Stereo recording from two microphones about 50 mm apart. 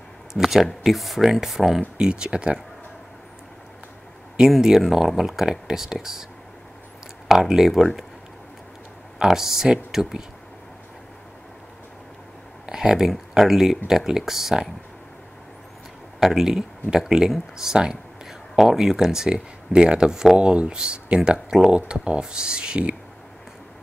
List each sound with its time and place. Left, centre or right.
0.3 s speech: centre
1.8 s speech: centre
4.5 s speech: centre
7.2 s speech: centre
9.2 s speech: centre
12.6 s speech: centre
16.2 s speech: centre; by 22.9 s right